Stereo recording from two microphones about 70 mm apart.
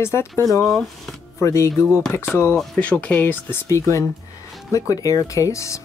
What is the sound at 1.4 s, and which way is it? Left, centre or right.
Speech, left.